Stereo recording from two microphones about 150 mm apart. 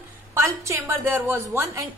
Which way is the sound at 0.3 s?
15° right (ahead or behind).